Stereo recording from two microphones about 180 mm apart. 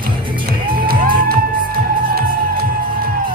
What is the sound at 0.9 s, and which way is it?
Music, 55° right (ahead or behind).